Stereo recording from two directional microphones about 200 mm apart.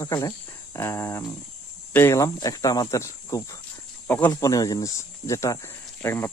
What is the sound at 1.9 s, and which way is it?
Speech, 15° left (ahead or behind).